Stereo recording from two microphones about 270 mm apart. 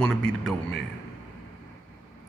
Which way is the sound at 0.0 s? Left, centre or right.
Centre.